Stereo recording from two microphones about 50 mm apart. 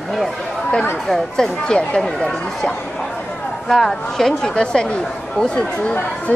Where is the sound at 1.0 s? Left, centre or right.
Centre.